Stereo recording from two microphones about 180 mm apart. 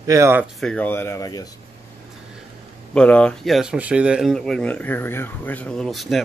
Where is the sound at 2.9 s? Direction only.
5° left (ahead or behind).